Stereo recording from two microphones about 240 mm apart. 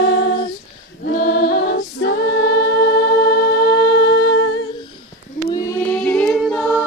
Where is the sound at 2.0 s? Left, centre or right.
Left.